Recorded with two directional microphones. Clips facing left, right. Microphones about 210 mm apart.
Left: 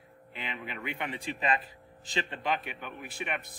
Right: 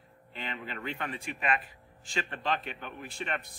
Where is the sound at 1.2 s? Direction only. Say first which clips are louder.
Left 2 dB; 30° left (ahead or behind).